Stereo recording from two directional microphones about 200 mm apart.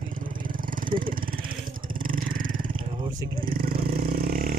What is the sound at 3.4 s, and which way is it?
Vehicle, 45° right (ahead or behind).